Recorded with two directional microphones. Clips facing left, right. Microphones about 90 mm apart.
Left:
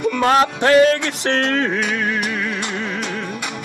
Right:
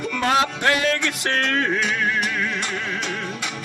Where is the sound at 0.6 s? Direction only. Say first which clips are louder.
Left 8 dB; 35° left (ahead or behind).